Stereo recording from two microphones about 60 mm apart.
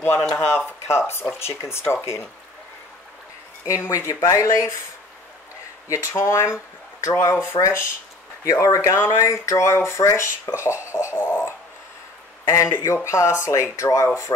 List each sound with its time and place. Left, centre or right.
0.0 s speech: left
3.6 s speech: left
5.9 s speech: left
8.5 s speech: left
12.4 s speech: left